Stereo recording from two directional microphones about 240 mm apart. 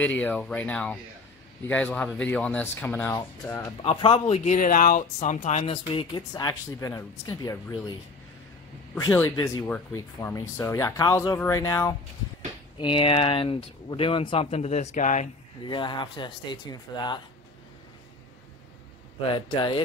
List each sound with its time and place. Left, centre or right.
0.0 s speech: centre
3.8 s speech: left
8.9 s speech: centre; by 15.2 s left
15.6 s speech: centre
19.2 s speech: left